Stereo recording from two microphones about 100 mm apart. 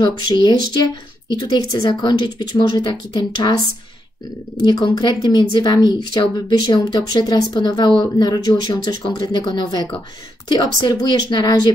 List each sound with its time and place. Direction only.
0.0 s speech: 45° left (ahead or behind)
4.6 s speech: 45° left (ahead or behind)